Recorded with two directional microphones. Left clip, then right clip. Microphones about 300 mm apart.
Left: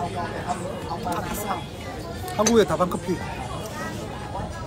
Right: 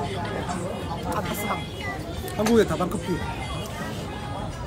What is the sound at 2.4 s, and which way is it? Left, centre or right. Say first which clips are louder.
Speech: left 2 dB; centre.